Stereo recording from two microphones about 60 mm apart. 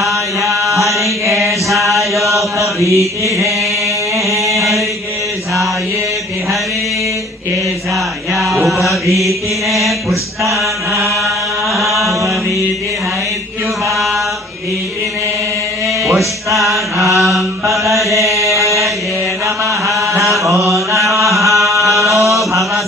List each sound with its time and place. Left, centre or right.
0.0 s chant: centre
1.2 s mantra: right
2.3 s chant: right
4.6 s chant: centre
8.4 s mantra: centre
11.0 s chant: centre
13.8 s chant: centre
16.5 s mantra: centre
17.9 s chant: right
20.6 s mantra: right
21.1 s chant: centre